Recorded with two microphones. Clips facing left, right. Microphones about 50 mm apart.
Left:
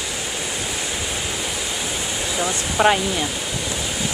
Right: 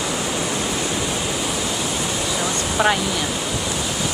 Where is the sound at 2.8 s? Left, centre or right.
Centre.